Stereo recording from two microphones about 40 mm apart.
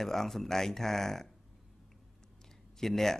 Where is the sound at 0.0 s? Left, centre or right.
Centre.